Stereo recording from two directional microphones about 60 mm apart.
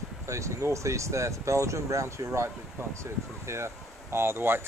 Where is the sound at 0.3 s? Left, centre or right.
Right.